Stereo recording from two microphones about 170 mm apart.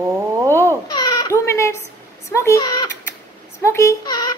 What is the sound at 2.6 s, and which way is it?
A child's voice, 25° left (ahead or behind).